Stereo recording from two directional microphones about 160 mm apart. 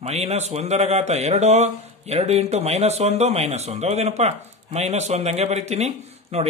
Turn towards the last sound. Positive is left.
turn(degrees=-40)  # may be behind; listen again after turning